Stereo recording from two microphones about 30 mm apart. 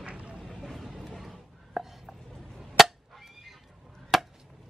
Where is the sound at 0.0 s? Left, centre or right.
Right.